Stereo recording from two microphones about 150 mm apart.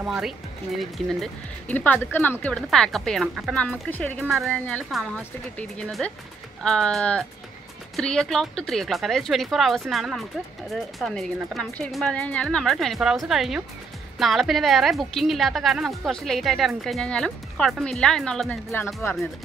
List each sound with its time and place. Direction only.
0.0 s a woman's voice: 5° right (ahead or behind)